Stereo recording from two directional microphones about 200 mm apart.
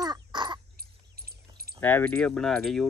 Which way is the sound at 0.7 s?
50° right (ahead or behind).